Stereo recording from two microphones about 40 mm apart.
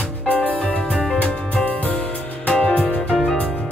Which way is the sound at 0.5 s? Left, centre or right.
Left.